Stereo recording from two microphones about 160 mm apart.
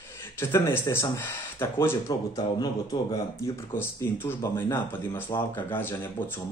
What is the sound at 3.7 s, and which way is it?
Speech, 15° left (ahead or behind).